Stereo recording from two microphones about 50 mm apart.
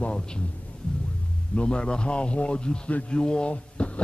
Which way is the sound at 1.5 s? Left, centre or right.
Left.